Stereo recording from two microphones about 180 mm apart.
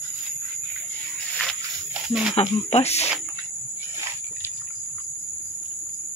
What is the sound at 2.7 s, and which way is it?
Speech, 35° left (ahead or behind).